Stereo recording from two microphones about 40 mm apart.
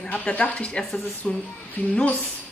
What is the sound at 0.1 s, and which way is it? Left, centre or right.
Speech, left.